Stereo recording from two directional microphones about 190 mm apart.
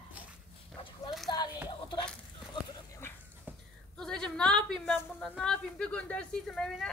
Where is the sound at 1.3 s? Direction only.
20° left (ahead or behind).